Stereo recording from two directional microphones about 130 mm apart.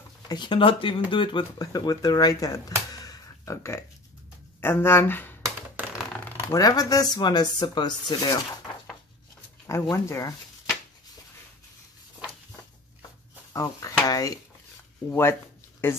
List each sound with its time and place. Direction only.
0.3 s speech: 35° left (ahead or behind)
2.9 s a sound: 25° left (ahead or behind)
4.6 s speech: 15° left (ahead or behind)
6.5 s speech: 25° left (ahead or behind)
9.7 s speech: 20° left (ahead or behind)
13.5 s speech: 25° left (ahead or behind)